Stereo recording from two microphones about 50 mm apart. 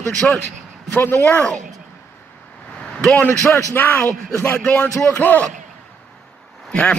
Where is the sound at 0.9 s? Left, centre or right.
Left.